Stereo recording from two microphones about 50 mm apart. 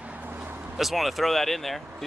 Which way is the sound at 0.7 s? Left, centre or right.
Centre.